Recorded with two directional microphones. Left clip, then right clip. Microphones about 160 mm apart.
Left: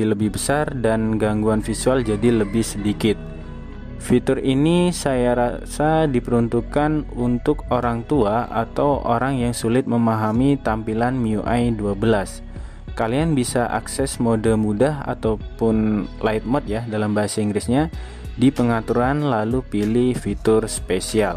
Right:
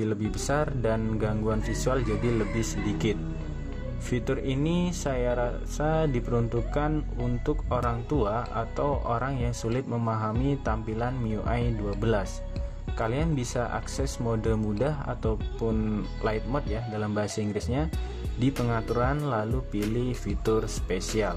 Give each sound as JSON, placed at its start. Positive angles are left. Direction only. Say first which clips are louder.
{"t": 0.0, "sound": "speech", "louder": "left 9 dB", "side_deg": 30}
{"t": 4.1, "sound": "speech", "louder": "left 11 dB", "side_deg": 35}